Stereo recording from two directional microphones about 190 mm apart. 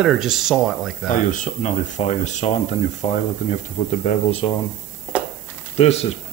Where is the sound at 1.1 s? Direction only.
40° left (ahead or behind).